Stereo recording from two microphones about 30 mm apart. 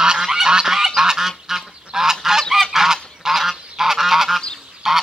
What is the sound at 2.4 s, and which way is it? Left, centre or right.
Goose, centre.